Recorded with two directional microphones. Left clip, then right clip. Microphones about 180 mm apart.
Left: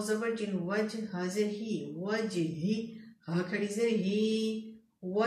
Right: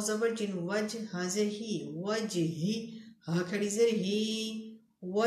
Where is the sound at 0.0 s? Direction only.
50° right (ahead or behind).